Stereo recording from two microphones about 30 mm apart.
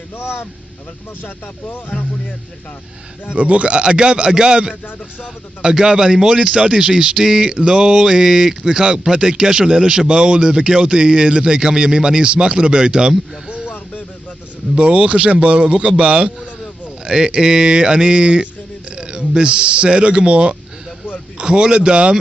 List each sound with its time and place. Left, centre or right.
1.9 s speech: left
3.3 s a man's voice: right
7.4 s a man's voice: right
14.8 s a man's voice: right
17.0 s speech: right
21.4 s a man's voice: right